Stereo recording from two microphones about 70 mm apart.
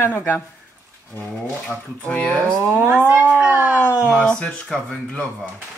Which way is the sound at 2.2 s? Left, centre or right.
Centre.